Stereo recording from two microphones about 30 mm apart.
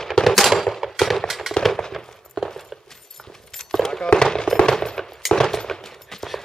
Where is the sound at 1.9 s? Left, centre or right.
Centre.